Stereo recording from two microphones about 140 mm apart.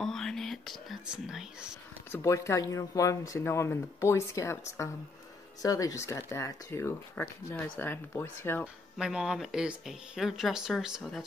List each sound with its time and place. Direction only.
0.0 s speech: 5° left (ahead or behind)
2.1 s speech: 20° left (ahead or behind)
8.9 s speech: 5° right (ahead or behind)